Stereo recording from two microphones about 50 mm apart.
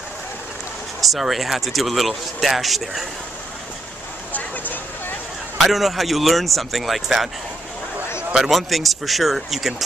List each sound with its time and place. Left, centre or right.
1.0 s speech: centre
4.3 s vehicle: left
5.6 s speech: centre
8.4 s speech: centre